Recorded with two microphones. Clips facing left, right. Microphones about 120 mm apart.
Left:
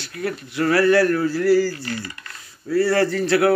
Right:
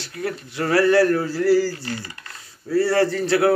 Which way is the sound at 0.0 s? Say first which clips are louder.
Left 1 dB; 25° right (ahead or behind).